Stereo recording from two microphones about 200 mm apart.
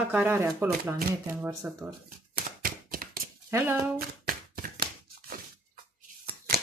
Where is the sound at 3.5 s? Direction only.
10° right (ahead or behind).